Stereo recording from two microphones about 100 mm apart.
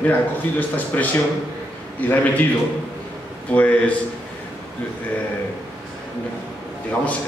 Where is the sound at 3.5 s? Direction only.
15° left (ahead or behind).